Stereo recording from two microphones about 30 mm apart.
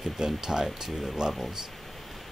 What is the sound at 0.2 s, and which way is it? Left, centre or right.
Speech, centre.